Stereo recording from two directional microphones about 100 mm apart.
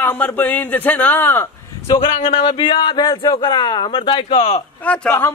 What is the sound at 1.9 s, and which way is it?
Speech, 65° left (ahead or behind).